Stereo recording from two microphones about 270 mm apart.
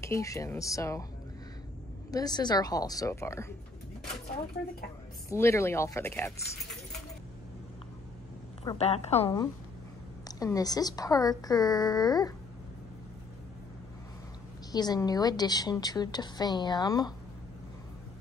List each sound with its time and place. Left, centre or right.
0.0 s a woman's voice: centre
2.0 s a woman's voice: centre
5.3 s a woman's voice: centre
8.6 s a woman's voice: left
14.7 s a woman's voice: centre